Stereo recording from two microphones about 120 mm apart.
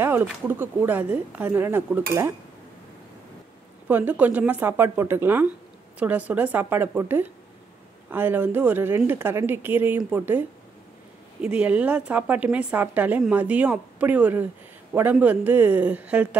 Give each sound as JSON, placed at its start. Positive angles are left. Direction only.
{"t": 0.0, "sound": "a woman's voice", "side_deg": -15}
{"t": 3.8, "sound": "a woman's voice", "side_deg": -15}
{"t": 11.4, "sound": "a woman's voice", "side_deg": -10}